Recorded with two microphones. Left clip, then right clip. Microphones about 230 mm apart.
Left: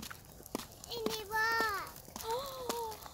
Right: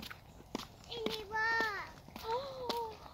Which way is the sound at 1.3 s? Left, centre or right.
Left.